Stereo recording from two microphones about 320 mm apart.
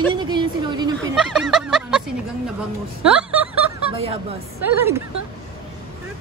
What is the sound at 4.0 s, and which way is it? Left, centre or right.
Speech, centre.